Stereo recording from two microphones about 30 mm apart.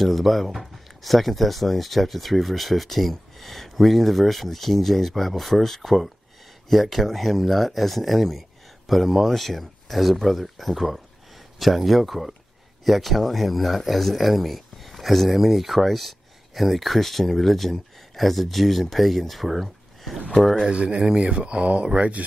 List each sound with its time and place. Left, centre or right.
0.0 s speech: centre
20.7 s speech: right